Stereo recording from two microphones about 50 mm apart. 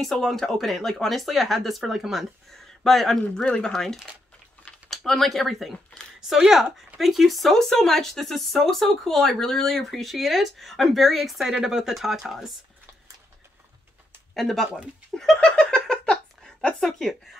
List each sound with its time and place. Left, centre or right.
0.0 s speech: centre
3.4 s speech: centre
3.7 s speech: centre
14.3 s speech: centre
15.0 s laughter: centre
15.4 s giggle: left
16.8 s speech: centre